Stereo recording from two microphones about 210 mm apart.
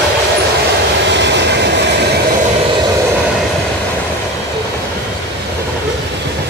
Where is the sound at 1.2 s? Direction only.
55° right (ahead or behind).